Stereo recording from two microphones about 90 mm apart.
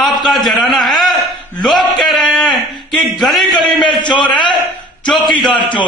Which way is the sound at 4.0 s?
60° left (ahead or behind).